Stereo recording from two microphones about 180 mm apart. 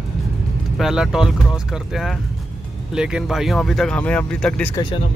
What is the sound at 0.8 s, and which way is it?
Speech, centre (ahead or behind).